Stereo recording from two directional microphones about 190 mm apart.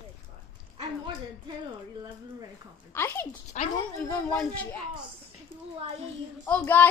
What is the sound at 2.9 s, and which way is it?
A child's voice, 15° left (ahead or behind).